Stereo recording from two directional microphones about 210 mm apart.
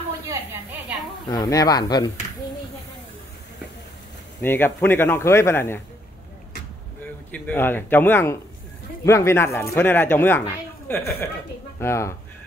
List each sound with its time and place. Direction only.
0.3 s a sound: 10° right (ahead or behind)
1.2 s speech: 20° left (ahead or behind)
4.4 s speech: 10° left (ahead or behind)
7.2 s speech: 5° left (ahead or behind)